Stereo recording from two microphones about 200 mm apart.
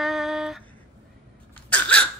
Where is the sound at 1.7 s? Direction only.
5° left (ahead or behind).